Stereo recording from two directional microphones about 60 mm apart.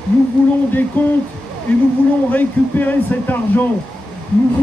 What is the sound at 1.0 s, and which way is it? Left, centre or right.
Speech, left.